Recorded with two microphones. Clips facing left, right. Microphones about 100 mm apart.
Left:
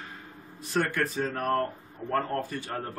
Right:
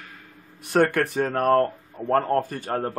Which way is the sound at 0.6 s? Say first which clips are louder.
Right 7 dB; 60° right (ahead or behind).